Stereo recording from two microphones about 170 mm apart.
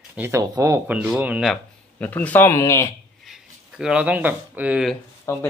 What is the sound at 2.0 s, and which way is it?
Speech, 10° left (ahead or behind).